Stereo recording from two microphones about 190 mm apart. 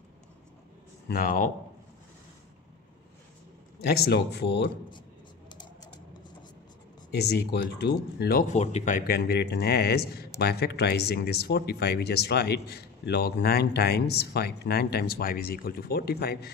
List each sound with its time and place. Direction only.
1.0 s speech: 50° left (ahead or behind)
3.8 s speech: 55° left (ahead or behind)
7.1 s speech: 60° left (ahead or behind)
8.5 s speech: 40° left (ahead or behind); by 16.5 s 55° left (ahead or behind)